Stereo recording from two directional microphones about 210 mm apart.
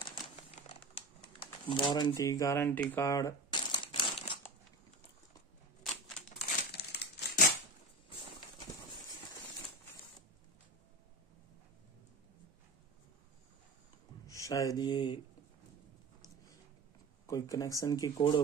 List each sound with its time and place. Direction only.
0.0 s crumpling: 25° left (ahead or behind)
6.7 s crumpling: 50° left (ahead or behind)
14.2 s speech: 15° left (ahead or behind)
17.3 s speech: 15° left (ahead or behind)